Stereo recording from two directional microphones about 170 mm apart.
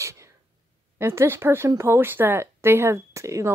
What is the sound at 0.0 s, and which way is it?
Sneeze, 15° right (ahead or behind).